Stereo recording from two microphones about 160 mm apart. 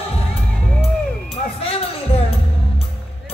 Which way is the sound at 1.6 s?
35° left (ahead or behind).